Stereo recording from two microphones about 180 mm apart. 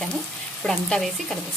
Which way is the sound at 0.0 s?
Centre (ahead or behind).